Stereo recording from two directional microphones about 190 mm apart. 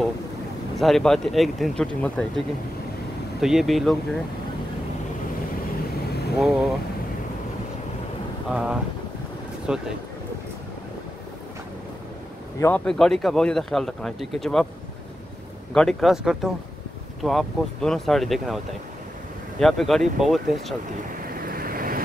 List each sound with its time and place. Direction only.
0.7 s speech: centre (ahead or behind)
6.3 s speech: centre (ahead or behind)
8.5 s speech: 5° right (ahead or behind)
12.5 s speech: 15° left (ahead or behind)
12.8 s speech: centre (ahead or behind)
15.7 s speech: centre (ahead or behind)
19.6 s speech: centre (ahead or behind)
21.4 s vehicle: 50° right (ahead or behind)